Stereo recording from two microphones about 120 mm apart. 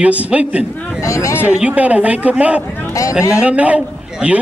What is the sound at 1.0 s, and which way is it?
Speech, 25° left (ahead or behind).